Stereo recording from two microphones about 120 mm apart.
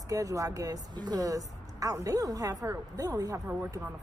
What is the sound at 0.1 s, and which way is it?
A woman's voice, 30° right (ahead or behind).